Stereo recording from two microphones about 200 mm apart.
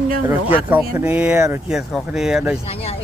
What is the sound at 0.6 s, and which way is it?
Speech, 10° right (ahead or behind).